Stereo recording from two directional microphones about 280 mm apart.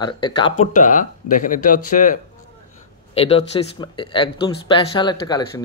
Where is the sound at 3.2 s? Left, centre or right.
Left.